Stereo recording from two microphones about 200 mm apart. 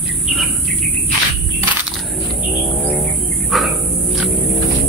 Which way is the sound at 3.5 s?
Centre (ahead or behind).